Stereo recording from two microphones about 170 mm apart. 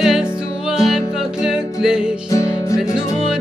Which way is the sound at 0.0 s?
5° right (ahead or behind).